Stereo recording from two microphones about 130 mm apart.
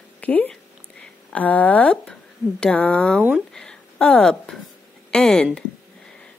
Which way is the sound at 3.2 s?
5° right (ahead or behind).